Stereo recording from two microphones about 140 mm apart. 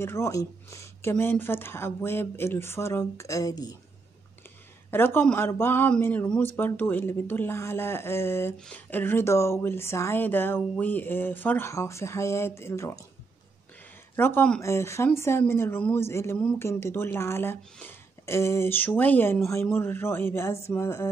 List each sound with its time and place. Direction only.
0.0 s speech: 20° left (ahead or behind)
4.9 s speech: 15° left (ahead or behind)
14.1 s speech: 15° left (ahead or behind)